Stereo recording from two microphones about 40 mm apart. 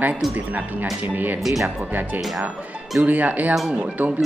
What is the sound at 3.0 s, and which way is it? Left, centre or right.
Speech, right.